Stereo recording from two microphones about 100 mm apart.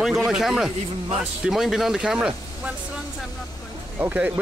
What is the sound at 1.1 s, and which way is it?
Speech, 5° right (ahead or behind).